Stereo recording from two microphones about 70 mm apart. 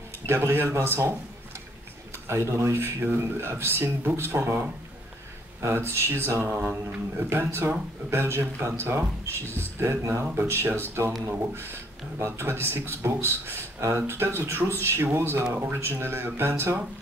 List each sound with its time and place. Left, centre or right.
0.3 s a man's voice: right
2.2 s a man's voice: right
6.5 s a sound: right
7.2 s a man's voice: right